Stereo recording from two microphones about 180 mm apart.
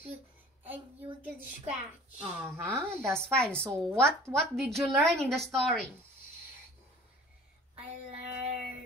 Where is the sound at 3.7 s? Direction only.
20° right (ahead or behind).